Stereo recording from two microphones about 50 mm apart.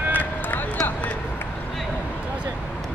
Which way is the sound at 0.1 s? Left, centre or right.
Left.